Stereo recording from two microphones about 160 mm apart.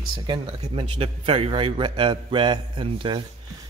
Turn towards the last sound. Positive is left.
turn(degrees=-30)  # may be behind; listen again after turning